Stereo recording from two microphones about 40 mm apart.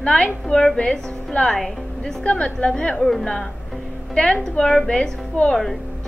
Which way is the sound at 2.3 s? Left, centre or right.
Left.